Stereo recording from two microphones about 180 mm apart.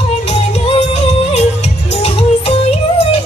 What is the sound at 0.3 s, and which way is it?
Music, 35° left (ahead or behind).